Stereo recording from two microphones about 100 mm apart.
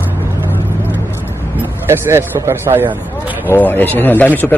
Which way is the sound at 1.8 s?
25° right (ahead or behind).